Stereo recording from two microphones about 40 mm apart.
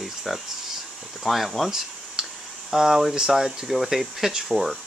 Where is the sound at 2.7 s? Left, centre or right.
Centre.